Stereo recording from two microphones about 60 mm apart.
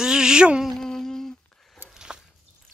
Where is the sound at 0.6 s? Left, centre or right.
Centre.